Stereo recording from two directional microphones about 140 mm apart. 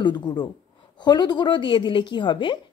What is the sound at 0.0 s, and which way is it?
A woman's voice, 30° left (ahead or behind).